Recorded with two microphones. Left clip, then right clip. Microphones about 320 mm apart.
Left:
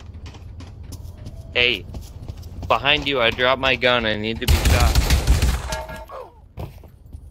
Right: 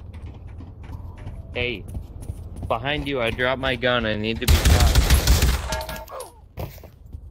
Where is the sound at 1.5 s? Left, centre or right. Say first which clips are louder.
Left 8 dB; left; by 5.2 s centre.